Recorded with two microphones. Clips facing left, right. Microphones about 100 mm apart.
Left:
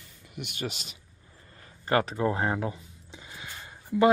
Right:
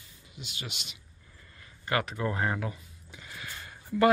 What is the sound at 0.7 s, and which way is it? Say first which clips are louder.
Speech: left 6 dB; 40° left (ahead or behind).